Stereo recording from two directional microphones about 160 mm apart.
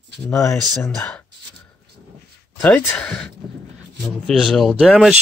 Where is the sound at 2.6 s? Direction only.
10° left (ahead or behind).